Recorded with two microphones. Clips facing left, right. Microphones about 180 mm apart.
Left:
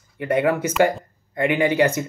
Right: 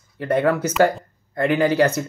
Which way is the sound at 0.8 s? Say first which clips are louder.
Right 1 dB; 10° left (ahead or behind).